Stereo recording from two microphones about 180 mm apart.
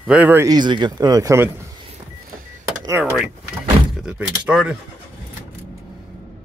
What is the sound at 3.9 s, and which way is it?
Speech, 5° right (ahead or behind).